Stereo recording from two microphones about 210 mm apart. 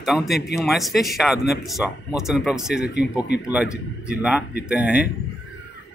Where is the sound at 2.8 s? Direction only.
50° left (ahead or behind).